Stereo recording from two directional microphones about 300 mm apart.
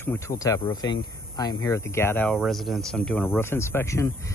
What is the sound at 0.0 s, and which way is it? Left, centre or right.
Speech, centre.